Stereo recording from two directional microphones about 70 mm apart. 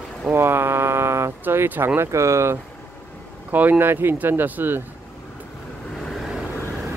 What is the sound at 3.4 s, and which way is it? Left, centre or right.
Speech, right.